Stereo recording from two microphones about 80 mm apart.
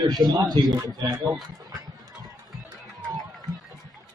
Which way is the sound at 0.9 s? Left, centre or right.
Right.